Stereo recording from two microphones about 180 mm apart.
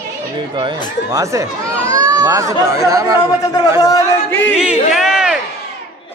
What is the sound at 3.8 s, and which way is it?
Speech, 20° left (ahead or behind).